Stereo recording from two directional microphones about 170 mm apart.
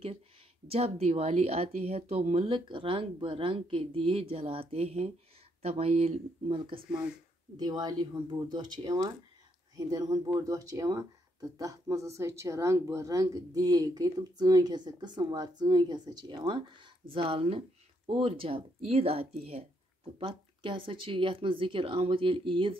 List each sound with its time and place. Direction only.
0.7 s speech: 35° right (ahead or behind)
6.9 s speech: 5° right (ahead or behind)
7.5 s speech: 25° right (ahead or behind)